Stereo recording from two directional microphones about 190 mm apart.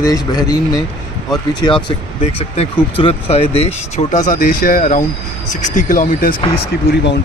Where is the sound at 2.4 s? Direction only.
30° left (ahead or behind); by 6.4 s 45° left (ahead or behind).